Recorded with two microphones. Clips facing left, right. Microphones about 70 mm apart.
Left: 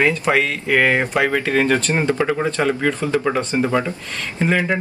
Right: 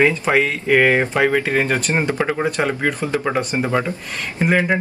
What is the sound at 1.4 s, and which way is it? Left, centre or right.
Speech, centre.